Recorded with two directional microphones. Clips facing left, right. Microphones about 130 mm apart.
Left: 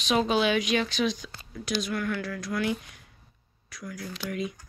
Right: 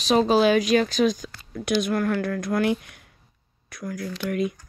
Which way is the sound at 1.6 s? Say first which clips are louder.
Right 7 dB; 60° right (ahead or behind).